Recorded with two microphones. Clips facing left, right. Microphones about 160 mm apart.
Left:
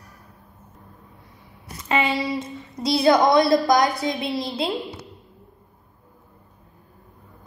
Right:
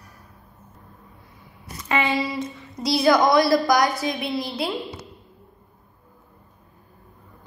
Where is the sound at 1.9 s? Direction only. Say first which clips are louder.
Left 1 dB; 25° left (ahead or behind).